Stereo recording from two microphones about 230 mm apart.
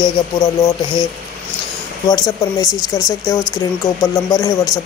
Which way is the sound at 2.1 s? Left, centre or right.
Centre.